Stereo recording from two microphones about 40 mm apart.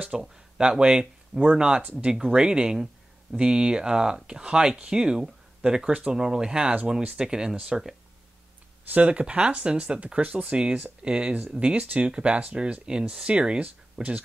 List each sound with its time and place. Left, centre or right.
0.2 s speech: centre
1.8 s speech: right
2.2 s speech: centre
8.9 s speech: right